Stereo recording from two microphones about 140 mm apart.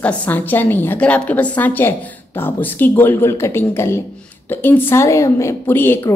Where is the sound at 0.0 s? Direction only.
10° left (ahead or behind).